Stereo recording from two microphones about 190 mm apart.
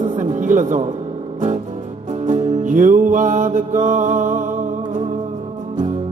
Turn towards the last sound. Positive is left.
turn(degrees=-45)  # may be behind; listen again after turning